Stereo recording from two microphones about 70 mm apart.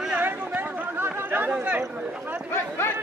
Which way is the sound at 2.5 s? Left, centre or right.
Left.